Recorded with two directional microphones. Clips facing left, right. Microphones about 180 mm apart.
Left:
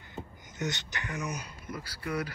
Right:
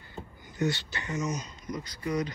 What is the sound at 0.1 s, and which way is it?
Speech, 20° left (ahead or behind).